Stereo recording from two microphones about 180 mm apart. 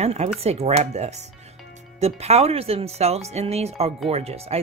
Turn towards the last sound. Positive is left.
turn(degrees=-35)  # may be behind; listen again after turning